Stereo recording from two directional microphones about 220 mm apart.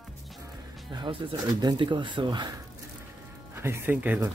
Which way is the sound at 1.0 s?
20° right (ahead or behind).